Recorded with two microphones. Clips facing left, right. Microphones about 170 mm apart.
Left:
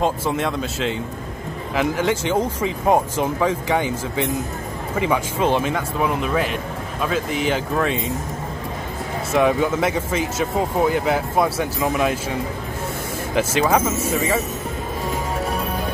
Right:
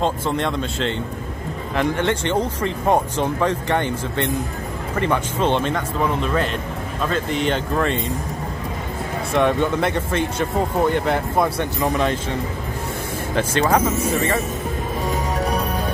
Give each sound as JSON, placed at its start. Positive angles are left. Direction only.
{"t": 0.0, "sound": "speech", "side_deg": 5}
{"t": 9.3, "sound": "speech", "side_deg": 5}
{"t": 13.6, "sound": "speech", "side_deg": 5}